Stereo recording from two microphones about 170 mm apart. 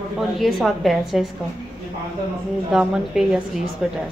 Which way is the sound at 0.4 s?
Centre (ahead or behind).